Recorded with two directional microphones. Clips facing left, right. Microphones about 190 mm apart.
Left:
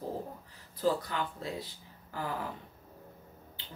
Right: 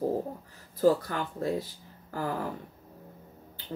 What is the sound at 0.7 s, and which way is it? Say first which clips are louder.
Speech: right 6 dB; 45° right (ahead or behind).